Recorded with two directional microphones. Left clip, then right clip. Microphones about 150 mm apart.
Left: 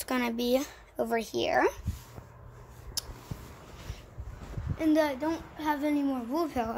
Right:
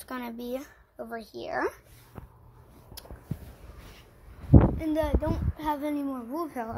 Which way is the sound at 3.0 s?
30° left (ahead or behind).